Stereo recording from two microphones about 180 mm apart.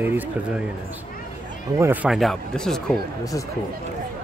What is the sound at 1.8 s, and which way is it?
Speech, 10° right (ahead or behind).